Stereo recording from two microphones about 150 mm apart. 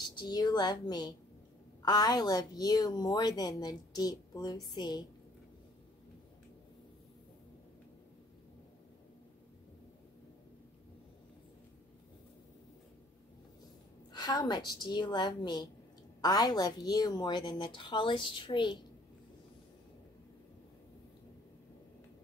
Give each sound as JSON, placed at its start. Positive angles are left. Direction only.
{"t": 0.0, "sound": "a woman's voice", "side_deg": 25}
{"t": 14.1, "sound": "a woman's voice", "side_deg": 25}